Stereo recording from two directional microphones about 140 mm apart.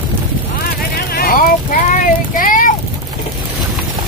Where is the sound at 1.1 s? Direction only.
90° left.